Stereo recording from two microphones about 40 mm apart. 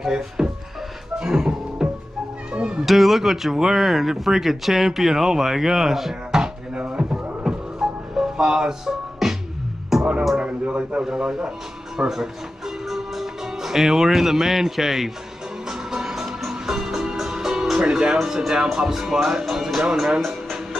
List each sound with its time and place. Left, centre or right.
0.0 s speech: centre
1.2 s music: centre
2.5 s cat: right
2.8 s speech: centre
6.4 s a sound: right
7.4 s music: centre
10.4 s speech: right; by 15.0 s centre
15.6 s music: centre
18.7 s speech: centre
20.2 s music: centre